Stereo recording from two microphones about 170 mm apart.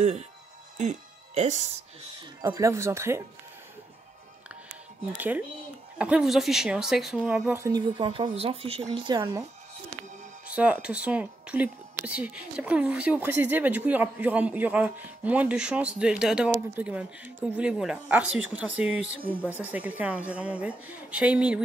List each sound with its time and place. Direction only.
0.7 s speech: 40° right (ahead or behind)
2.4 s speech: 20° right (ahead or behind)
5.1 s speech: 10° right (ahead or behind)
10.5 s speech: 5° right (ahead or behind)